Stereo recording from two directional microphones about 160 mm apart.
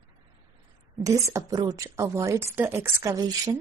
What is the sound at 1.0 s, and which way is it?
A woman's voice, 20° right (ahead or behind).